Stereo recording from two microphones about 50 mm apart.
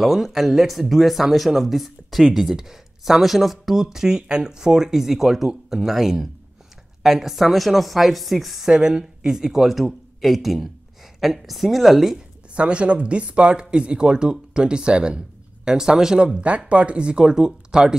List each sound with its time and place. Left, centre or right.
0.0 s speech: centre
8.6 s speech: centre
12.5 s speech: right